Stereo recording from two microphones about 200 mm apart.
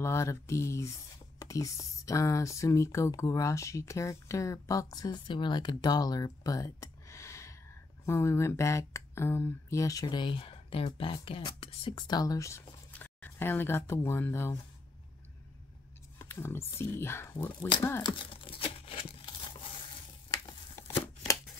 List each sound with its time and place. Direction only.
0.0 s speech: 15° left (ahead or behind)
16.2 s speech: 10° left (ahead or behind)
18.0 s tearing: 25° left (ahead or behind)